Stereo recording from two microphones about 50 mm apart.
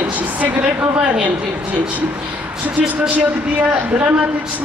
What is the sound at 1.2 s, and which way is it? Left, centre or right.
A woman's voice, right.